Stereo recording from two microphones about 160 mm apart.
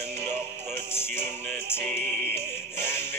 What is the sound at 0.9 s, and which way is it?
Music, 15° left (ahead or behind).